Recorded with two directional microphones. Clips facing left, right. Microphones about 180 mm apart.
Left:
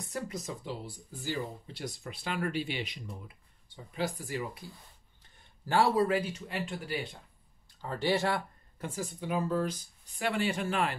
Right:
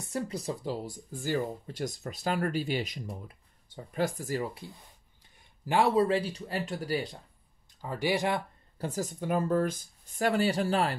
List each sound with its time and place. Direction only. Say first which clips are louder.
0.0 s speech: right 4 dB; 30° right (ahead or behind)
5.7 s speech: right 2 dB; 20° right (ahead or behind); by 7.2 s 40° right (ahead or behind)
7.8 s speech: right 1 dB; 10° right (ahead or behind)
8.7 s speech: right 4 dB; 40° right (ahead or behind)